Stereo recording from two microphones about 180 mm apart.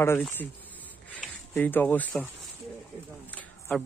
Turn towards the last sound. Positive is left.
turn(degrees=5)  # may be behind; listen again after turning